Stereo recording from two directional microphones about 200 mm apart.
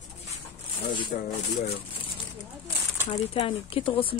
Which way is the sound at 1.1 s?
45° left (ahead or behind).